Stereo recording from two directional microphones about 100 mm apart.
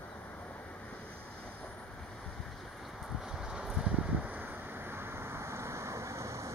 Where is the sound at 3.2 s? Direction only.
5° right (ahead or behind).